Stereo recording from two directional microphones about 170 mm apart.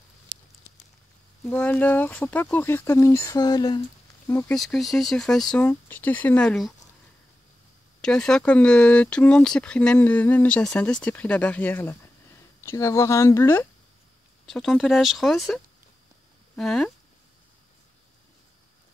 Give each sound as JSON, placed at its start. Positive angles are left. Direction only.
{"t": 1.4, "sound": "speech", "side_deg": 10}
{"t": 4.3, "sound": "speech", "side_deg": 10}
{"t": 4.6, "sound": "speech", "side_deg": 0}
{"t": 8.0, "sound": "speech", "side_deg": 5}
{"t": 14.4, "sound": "speech", "side_deg": 0}